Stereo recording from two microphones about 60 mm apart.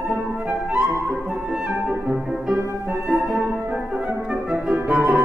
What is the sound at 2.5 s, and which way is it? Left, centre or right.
Music, right.